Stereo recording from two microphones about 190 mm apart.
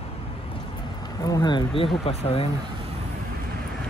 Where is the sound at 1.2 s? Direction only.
20° left (ahead or behind).